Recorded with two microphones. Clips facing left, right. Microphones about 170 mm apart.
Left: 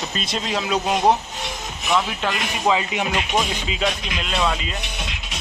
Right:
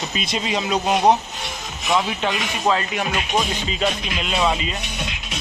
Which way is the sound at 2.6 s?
10° left (ahead or behind).